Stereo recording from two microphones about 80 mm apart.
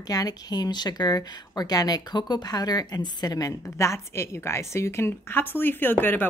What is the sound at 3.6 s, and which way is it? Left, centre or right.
A woman's voice, left.